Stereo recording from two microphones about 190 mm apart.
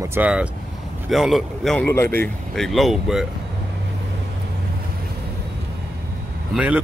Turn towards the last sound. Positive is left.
turn(degrees=-5)  # may be behind; listen again after turning